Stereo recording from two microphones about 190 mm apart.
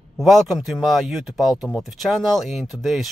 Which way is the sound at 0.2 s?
Centre (ahead or behind).